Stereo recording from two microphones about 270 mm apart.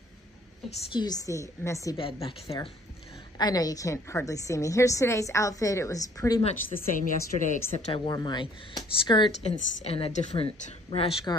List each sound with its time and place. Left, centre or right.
0.9 s a woman's voice: centre
6.9 s a woman's voice: left
7.8 s a woman's voice: centre